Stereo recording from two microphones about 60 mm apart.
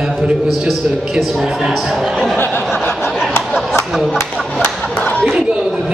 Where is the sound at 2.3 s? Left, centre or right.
Left.